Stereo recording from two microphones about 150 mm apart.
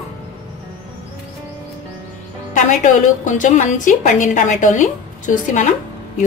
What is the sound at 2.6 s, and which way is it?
A woman's voice, 55° left (ahead or behind).